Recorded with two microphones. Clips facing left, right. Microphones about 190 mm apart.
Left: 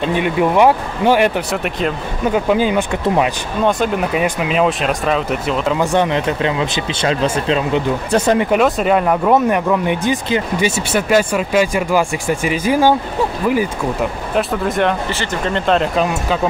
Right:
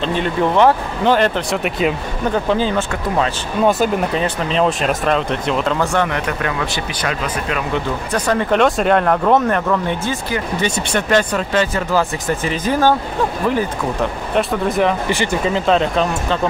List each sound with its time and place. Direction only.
0.0 s speech: 10° left (ahead or behind)
1.6 s speech: 5° right (ahead or behind)
2.3 s speech: 10° left (ahead or behind)
8.5 s speech: 5° left (ahead or behind)
14.3 s speech: centre (ahead or behind)
15.0 s speech: 15° right (ahead or behind)
15.5 s speech: centre (ahead or behind)